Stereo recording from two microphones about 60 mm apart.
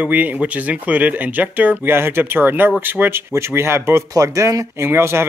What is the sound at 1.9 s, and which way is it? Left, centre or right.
Speech, right.